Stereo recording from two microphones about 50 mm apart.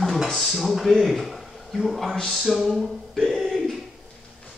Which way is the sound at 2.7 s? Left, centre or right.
Centre.